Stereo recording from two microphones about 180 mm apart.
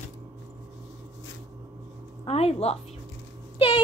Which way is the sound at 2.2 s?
35° left (ahead or behind).